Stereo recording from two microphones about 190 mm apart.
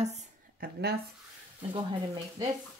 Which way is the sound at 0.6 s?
55° right (ahead or behind).